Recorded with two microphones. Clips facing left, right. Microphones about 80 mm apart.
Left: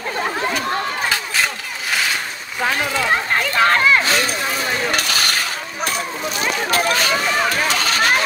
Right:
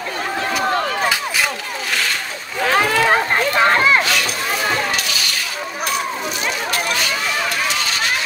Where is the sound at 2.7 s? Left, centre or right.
Right.